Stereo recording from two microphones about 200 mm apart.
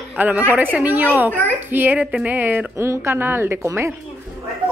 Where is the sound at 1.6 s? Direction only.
10° right (ahead or behind).